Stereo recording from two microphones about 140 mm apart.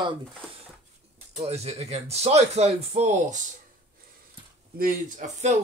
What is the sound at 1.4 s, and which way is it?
Speech, 50° right (ahead or behind).